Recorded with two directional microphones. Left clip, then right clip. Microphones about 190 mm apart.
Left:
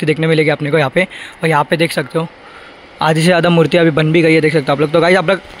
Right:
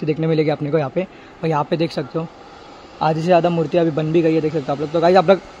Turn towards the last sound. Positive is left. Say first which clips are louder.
# left 4 dB
turn(degrees=20)  # may be behind; listen again after turning